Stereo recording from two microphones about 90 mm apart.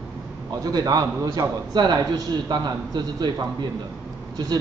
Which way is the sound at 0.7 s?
45° right (ahead or behind).